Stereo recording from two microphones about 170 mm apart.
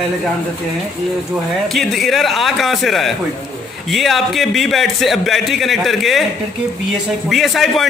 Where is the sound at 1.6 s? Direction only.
Centre (ahead or behind).